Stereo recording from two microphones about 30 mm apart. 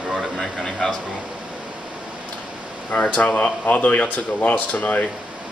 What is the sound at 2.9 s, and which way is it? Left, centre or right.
Speech, left.